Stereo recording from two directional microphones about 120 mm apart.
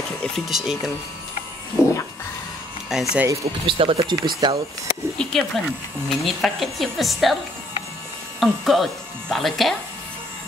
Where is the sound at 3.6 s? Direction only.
50° right (ahead or behind).